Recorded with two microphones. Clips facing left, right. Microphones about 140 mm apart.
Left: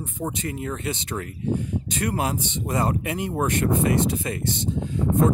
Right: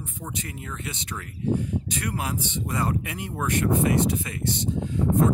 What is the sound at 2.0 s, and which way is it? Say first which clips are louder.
Speech: left 9 dB; 30° left (ahead or behind).